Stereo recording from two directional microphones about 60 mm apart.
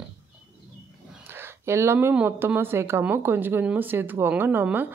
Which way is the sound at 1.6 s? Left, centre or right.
Right.